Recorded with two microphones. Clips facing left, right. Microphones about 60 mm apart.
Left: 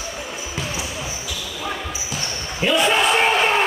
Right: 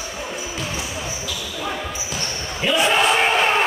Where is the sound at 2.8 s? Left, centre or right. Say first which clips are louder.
Right 1 dB; centre.